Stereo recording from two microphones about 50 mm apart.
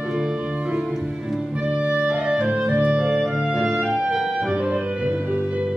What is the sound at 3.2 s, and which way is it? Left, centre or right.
Music, centre.